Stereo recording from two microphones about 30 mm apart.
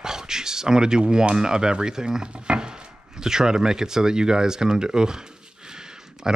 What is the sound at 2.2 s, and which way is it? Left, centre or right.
Chopping, right.